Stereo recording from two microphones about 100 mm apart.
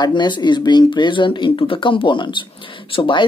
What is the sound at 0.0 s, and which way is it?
Speech, 50° left (ahead or behind).